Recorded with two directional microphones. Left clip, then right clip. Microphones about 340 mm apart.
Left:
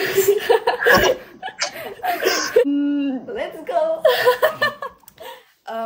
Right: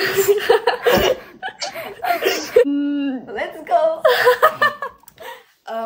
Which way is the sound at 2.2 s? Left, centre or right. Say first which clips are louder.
Right 1 dB; centre.